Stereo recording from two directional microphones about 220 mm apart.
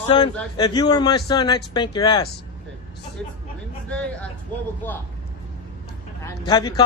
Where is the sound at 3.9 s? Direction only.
5° left (ahead or behind).